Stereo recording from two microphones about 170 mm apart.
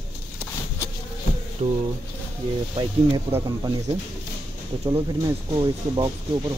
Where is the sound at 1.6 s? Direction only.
35° right (ahead or behind).